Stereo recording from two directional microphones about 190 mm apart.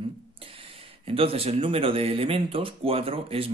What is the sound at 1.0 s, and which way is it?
Speech, 30° right (ahead or behind).